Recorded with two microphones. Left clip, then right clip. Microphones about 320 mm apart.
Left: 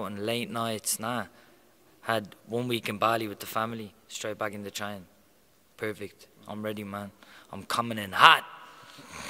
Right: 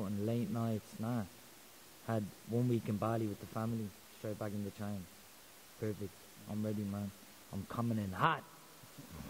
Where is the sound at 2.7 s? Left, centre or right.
Centre.